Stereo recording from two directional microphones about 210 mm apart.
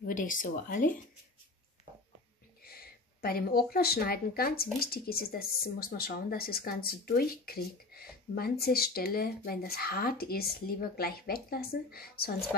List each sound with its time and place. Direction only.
0.0 s speech: 40° left (ahead or behind)
2.6 s speech: 45° left (ahead or behind)